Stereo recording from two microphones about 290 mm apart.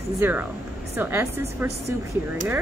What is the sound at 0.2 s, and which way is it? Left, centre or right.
A woman's voice, centre.